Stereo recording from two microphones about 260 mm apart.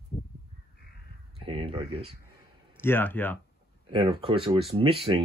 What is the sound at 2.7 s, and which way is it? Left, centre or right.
Speech, centre.